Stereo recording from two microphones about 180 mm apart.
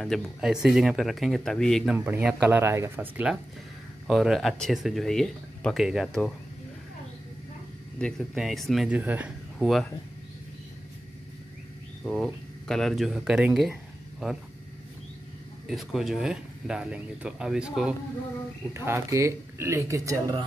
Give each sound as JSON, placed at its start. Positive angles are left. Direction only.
{"t": 0.0, "sound": "speech", "side_deg": 0}
{"t": 2.0, "sound": "speech", "side_deg": -10}
{"t": 8.0, "sound": "speech", "side_deg": 0}
{"t": 12.0, "sound": "speech", "side_deg": 0}
{"t": 15.7, "sound": "speech", "side_deg": 0}